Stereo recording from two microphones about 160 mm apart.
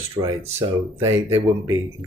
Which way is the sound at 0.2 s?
15° right (ahead or behind).